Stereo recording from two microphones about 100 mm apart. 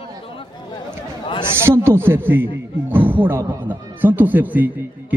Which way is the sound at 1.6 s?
25° right (ahead or behind).